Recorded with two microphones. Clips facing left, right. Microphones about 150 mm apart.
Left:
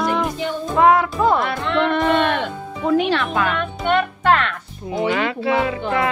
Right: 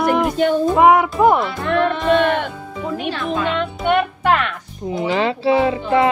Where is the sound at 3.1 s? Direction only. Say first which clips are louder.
Left 2 dB; 75° left (ahead or behind).